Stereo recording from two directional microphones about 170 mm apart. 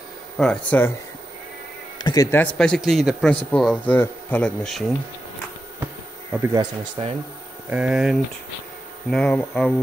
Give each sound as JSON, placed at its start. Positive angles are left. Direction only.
{"t": 0.4, "sound": "speech", "side_deg": 5}
{"t": 2.0, "sound": "a sound", "side_deg": 25}
{"t": 2.3, "sound": "a man's voice", "side_deg": 5}
{"t": 6.3, "sound": "speech", "side_deg": -20}
{"t": 7.0, "sound": "speech", "side_deg": -35}
{"t": 7.7, "sound": "a man's voice", "side_deg": -5}